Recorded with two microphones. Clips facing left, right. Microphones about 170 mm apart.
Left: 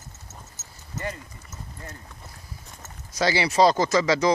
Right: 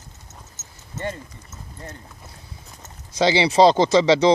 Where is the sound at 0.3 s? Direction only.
25° right (ahead or behind).